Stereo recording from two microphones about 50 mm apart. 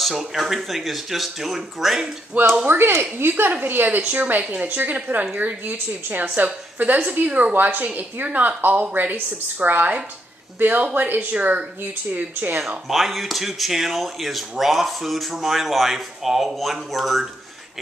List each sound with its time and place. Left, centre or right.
0.0 s speech: centre
2.3 s a woman's voice: right
2.8 s a woman's voice: right
4.0 s a woman's voice: right
11.3 s speech: right
12.8 s speech: centre